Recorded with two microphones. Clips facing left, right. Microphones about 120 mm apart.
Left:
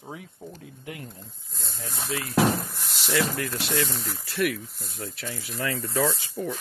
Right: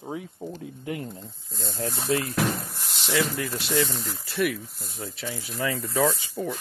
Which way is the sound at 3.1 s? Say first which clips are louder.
Even; 15° right (ahead or behind).